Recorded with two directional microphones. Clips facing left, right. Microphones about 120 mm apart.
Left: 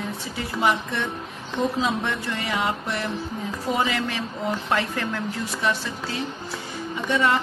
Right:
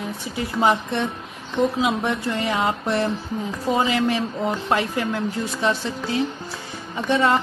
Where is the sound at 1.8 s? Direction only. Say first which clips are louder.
Right 3 dB; 15° right (ahead or behind).